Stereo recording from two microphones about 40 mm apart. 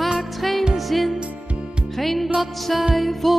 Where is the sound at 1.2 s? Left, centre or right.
Right.